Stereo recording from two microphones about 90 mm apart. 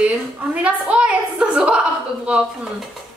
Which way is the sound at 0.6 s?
10° right (ahead or behind).